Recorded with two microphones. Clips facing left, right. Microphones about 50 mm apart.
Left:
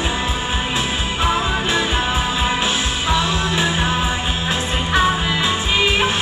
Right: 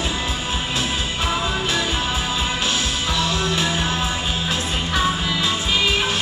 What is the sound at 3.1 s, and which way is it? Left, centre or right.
Music, centre.